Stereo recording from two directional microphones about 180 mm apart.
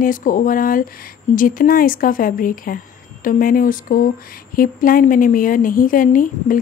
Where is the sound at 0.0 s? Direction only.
50° left (ahead or behind).